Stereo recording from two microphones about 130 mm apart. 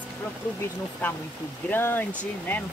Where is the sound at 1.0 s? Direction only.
10° left (ahead or behind).